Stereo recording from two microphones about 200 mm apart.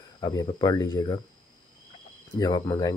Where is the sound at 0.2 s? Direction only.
20° left (ahead or behind).